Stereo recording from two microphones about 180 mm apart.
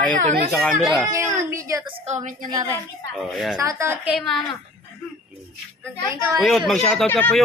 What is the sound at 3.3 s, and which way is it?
Speech, centre (ahead or behind).